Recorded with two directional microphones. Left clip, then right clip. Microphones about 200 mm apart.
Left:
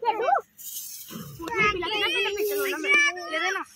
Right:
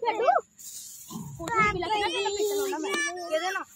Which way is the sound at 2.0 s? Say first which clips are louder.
Left 3 dB; 35° right (ahead or behind).